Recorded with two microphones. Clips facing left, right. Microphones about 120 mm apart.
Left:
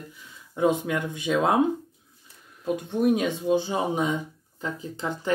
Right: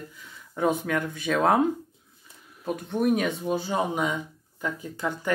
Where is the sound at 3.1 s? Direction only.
25° left (ahead or behind).